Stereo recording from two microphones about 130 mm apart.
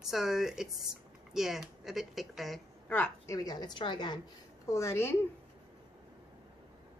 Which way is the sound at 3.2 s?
30° left (ahead or behind).